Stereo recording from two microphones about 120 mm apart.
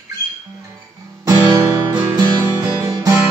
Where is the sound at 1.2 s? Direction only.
30° right (ahead or behind).